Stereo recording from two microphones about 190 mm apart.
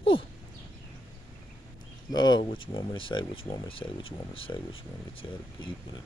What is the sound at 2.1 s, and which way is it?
Speech, 25° left (ahead or behind).